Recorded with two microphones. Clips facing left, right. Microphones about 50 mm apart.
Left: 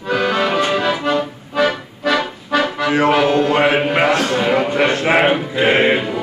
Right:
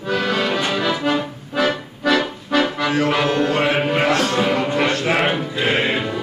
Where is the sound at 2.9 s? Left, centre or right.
Left.